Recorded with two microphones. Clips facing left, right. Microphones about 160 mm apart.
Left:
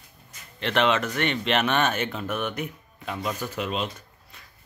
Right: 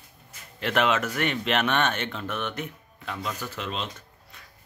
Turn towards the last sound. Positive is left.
turn(degrees=10)  # may be behind; listen again after turning